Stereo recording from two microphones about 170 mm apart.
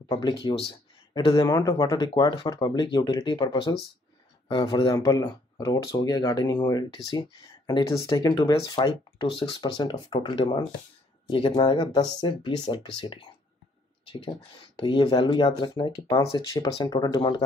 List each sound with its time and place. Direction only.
0.1 s speech: 25° left (ahead or behind)
14.8 s speech: 30° left (ahead or behind)